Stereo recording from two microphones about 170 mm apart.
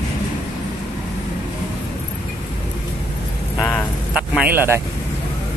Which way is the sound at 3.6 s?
10° left (ahead or behind).